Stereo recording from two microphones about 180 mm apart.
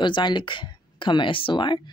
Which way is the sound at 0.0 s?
25° left (ahead or behind).